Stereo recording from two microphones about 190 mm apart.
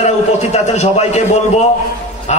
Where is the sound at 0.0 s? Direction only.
35° left (ahead or behind).